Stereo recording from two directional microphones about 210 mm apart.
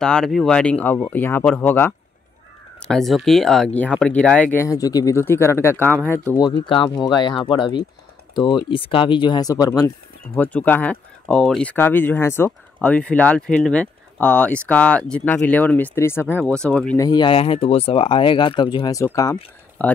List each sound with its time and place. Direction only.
0.0 s speech: 5° left (ahead or behind)
17.0 s speech: 20° left (ahead or behind)